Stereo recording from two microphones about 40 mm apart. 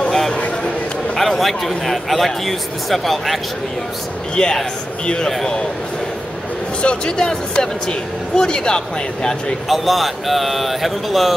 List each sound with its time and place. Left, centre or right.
1.1 s a man's voice: centre
4.4 s speech: left
6.8 s speech: left
9.7 s a man's voice: centre